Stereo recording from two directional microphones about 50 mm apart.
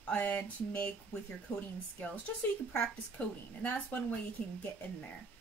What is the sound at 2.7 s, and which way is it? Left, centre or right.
A woman's voice, left.